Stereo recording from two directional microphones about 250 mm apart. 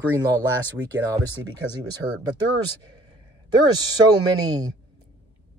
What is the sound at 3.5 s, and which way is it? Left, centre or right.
Speech, centre.